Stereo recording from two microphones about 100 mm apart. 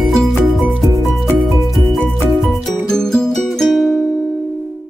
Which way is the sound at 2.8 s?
5° left (ahead or behind).